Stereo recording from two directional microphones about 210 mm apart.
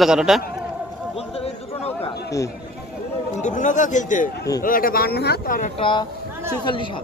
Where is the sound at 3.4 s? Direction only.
35° left (ahead or behind).